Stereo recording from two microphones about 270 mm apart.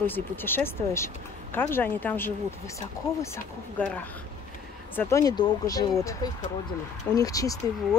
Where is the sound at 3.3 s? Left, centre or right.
Centre.